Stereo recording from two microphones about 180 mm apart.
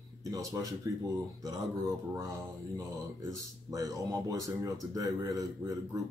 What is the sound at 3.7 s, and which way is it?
Speech, 20° right (ahead or behind).